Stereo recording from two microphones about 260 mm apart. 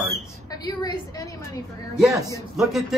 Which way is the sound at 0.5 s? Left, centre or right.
Centre.